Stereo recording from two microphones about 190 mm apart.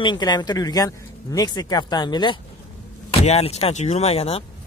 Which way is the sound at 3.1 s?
35° left (ahead or behind).